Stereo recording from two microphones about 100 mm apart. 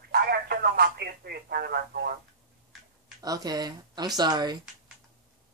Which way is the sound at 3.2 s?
40° right (ahead or behind).